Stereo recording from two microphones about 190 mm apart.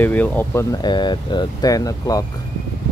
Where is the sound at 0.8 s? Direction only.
25° left (ahead or behind).